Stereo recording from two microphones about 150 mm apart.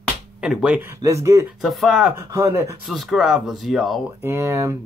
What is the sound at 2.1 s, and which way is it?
Speech, 20° right (ahead or behind).